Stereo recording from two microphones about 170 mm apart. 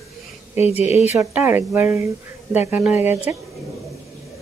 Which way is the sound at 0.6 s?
40° left (ahead or behind).